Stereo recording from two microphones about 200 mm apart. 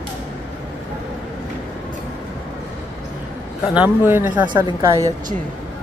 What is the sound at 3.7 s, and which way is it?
Speech, 10° right (ahead or behind).